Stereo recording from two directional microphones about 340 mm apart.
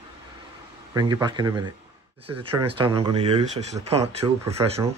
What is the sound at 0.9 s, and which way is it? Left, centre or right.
Speech, centre.